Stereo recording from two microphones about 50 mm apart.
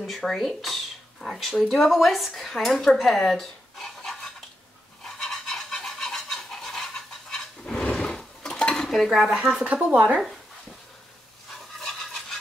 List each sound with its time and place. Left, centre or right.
0.0 s speech: centre
5.0 s stir: centre
5.7 s a sound: centre
9.1 s speech: centre
9.7 s speech: right
11.8 s stir: centre